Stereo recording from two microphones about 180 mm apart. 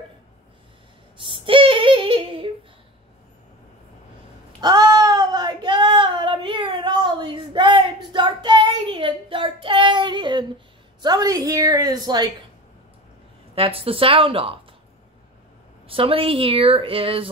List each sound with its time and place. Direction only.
1.2 s female singing: 30° right (ahead or behind)
4.6 s child singing: 20° right (ahead or behind)
11.0 s a sound: 20° right (ahead or behind)
13.6 s a woman's voice: 30° right (ahead or behind)
15.9 s a woman's voice: 30° right (ahead or behind)